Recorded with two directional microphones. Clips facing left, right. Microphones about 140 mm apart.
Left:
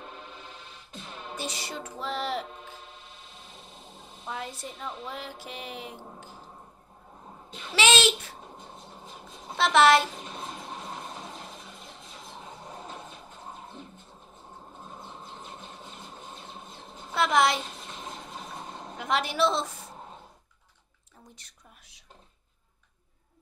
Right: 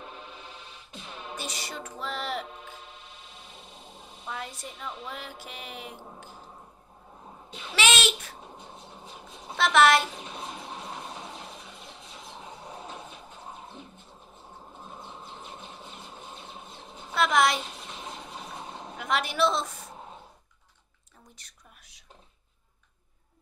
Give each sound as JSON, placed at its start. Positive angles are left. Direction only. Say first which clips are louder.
{"t": 0.0, "sound": "music", "louder": "even", "side_deg": 40}
{"t": 1.3, "sound": "speech", "louder": "left 2 dB", "side_deg": 25}
{"t": 3.5, "sound": "a sound", "louder": "even", "side_deg": 0}
{"t": 4.3, "sound": "speech", "louder": "left 1 dB", "side_deg": 30}
{"t": 7.7, "sound": "babbling", "louder": "left 3 dB", "side_deg": 25}
{"t": 9.6, "sound": "speech", "louder": "left 1 dB", "side_deg": 30}
{"t": 10.1, "sound": "a sound", "louder": "even", "side_deg": 0}
{"t": 12.7, "sound": "vehicle", "louder": "even", "side_deg": 45}
{"t": 15.8, "sound": "a sound", "louder": "even", "side_deg": 40}
{"t": 17.1, "sound": "a woman's voice", "louder": "even", "side_deg": 25}
{"t": 18.0, "sound": "a sound", "louder": "even", "side_deg": 0}
{"t": 18.9, "sound": "speech", "louder": "even", "side_deg": 25}
{"t": 21.4, "sound": "speech", "louder": "even", "side_deg": 25}